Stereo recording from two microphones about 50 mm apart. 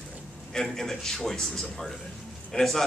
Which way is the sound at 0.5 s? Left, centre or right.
Centre.